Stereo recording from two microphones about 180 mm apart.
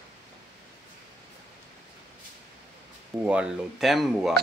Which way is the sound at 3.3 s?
5° right (ahead or behind).